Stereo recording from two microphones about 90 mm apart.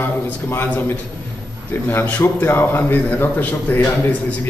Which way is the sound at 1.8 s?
20° left (ahead or behind).